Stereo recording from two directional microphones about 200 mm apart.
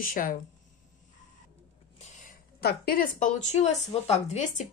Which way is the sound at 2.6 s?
45° left (ahead or behind).